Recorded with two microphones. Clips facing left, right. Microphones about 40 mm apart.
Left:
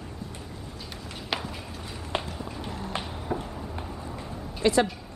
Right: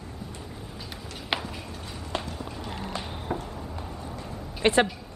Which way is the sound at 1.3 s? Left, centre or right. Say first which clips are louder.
Right 2 dB; right.